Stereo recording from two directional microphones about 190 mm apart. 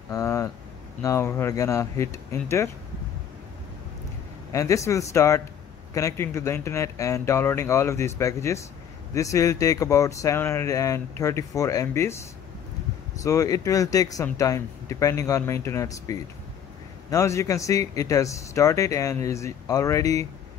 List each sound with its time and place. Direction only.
0.1 s speech: 15° left (ahead or behind)
4.5 s speech: 15° left (ahead or behind)